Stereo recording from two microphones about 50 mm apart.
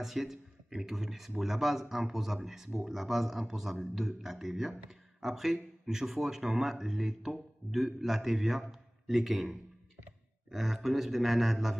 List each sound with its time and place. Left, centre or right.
0.0 s a man's voice: centre
10.5 s speech: centre